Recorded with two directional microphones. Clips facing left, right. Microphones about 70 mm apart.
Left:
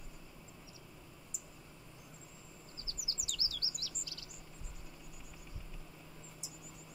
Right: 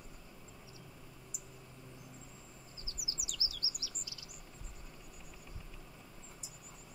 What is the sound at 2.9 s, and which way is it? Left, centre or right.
Chirp, centre.